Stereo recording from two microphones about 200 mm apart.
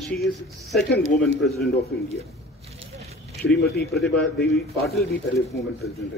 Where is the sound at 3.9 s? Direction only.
Centre (ahead or behind).